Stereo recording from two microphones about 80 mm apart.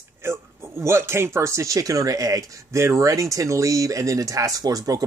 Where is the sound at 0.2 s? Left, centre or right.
Right.